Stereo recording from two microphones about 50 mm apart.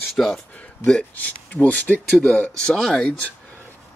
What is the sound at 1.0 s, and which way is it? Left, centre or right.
Speech, left.